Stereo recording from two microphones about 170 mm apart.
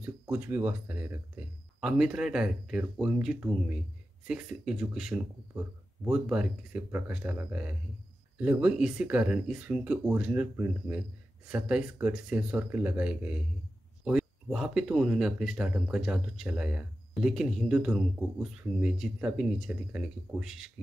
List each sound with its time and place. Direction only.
0.0 s speech: 10° right (ahead or behind)